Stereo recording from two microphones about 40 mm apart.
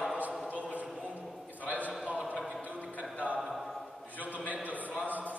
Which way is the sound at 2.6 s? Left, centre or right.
Right.